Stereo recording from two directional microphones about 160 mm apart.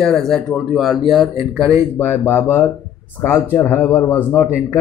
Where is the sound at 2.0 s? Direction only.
15° left (ahead or behind).